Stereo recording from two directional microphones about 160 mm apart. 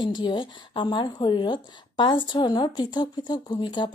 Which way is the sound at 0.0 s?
30° left (ahead or behind).